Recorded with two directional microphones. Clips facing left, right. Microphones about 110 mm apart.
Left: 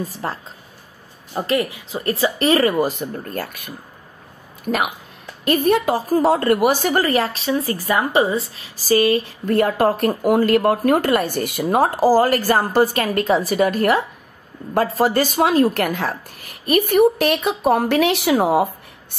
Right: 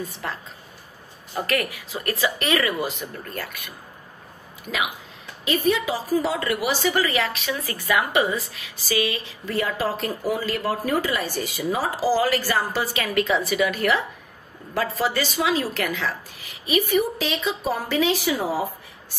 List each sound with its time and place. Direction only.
0.0 s speech: 35° left (ahead or behind)
1.3 s a woman's voice: 25° left (ahead or behind); by 18.7 s 65° left (ahead or behind)